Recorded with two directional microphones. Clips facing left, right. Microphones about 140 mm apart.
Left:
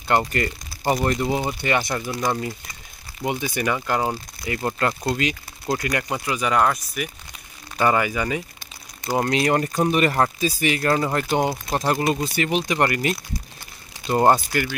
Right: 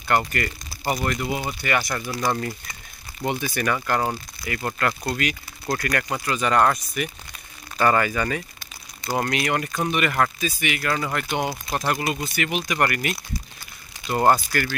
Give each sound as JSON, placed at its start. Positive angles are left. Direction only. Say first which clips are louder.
{"t": 0.1, "sound": "speech", "louder": "left 2 dB", "side_deg": 25}
{"t": 2.0, "sound": "speech", "louder": "left 1 dB", "side_deg": 5}
{"t": 9.1, "sound": "speech", "louder": "left 4 dB", "side_deg": 25}